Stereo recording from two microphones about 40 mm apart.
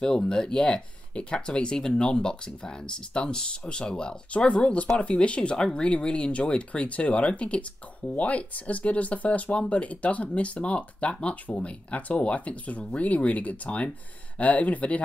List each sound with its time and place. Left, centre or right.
0.0 s speech: left
4.5 s speech: left